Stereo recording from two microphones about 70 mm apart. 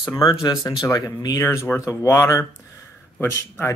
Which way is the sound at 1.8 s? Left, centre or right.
Left.